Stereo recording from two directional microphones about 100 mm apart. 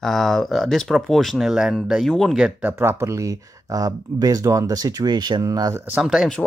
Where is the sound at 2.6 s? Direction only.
20° right (ahead or behind); by 5.7 s 40° right (ahead or behind).